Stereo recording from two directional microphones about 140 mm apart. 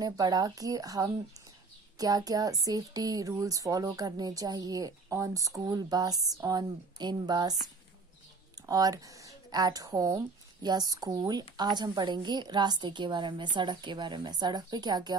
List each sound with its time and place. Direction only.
0.0 s speech: 30° right (ahead or behind)
8.5 s a woman's voice: 25° right (ahead or behind)